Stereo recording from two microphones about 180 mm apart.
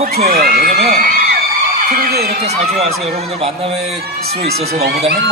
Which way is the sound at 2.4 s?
35° right (ahead or behind).